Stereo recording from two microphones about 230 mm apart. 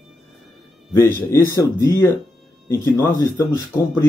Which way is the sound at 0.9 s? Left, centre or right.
Centre.